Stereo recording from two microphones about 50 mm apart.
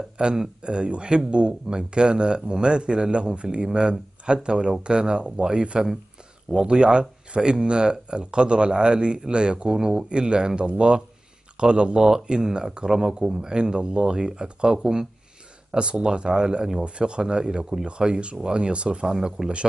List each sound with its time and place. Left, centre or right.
0.2 s speech: centre